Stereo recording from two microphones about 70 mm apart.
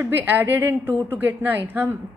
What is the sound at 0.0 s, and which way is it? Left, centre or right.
A woman's voice, right.